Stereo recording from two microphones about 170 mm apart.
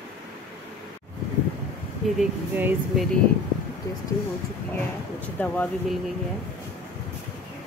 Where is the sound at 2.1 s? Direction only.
10° right (ahead or behind).